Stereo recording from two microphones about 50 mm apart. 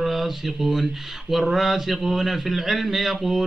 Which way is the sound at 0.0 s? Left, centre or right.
Centre.